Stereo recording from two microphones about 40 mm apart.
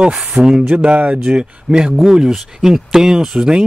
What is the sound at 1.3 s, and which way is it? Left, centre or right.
Speech, right.